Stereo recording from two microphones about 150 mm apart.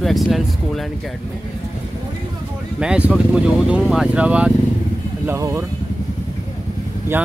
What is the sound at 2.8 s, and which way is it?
Speech, 5° right (ahead or behind).